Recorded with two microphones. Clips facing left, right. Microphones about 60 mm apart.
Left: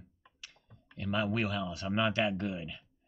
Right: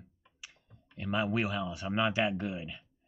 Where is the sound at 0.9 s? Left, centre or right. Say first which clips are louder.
Right 1 dB; centre.